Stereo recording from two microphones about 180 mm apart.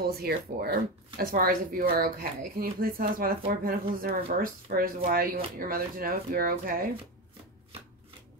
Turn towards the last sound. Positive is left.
turn(degrees=-55)  # may be behind; listen again after turning